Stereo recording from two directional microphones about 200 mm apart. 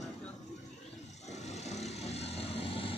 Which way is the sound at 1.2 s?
35° left (ahead or behind).